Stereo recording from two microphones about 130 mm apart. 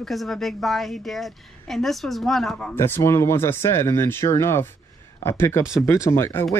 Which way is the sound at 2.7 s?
15° left (ahead or behind).